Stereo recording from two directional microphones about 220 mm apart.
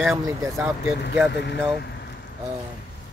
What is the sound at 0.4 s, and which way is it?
Speech, 5° right (ahead or behind).